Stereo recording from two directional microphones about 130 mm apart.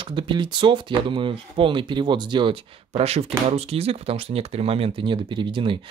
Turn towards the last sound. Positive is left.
turn(degrees=-40)  # may be behind; listen again after turning